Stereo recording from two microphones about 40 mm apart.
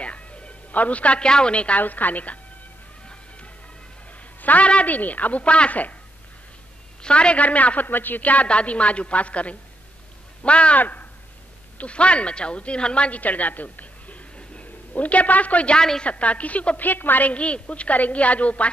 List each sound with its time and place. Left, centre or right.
0.0 s a sound: left
1.8 s a woman's voice: left
4.4 s a woman's voice: left
5.4 s a woman's voice: left
7.0 s speech: left
7.4 s a woman's voice: left
10.8 s speech: left
11.8 s speech: left
13.2 s a sound: left
15.7 s a woman's voice: centre
16.0 s a woman's voice: left
17.3 s a woman's voice: left